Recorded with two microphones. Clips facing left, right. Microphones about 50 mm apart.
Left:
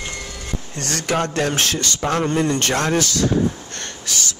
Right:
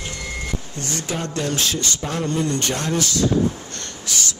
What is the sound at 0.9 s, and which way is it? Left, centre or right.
Speech, left.